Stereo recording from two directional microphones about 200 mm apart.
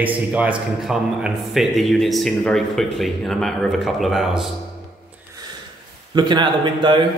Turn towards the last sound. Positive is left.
turn(degrees=-25)  # may be behind; listen again after turning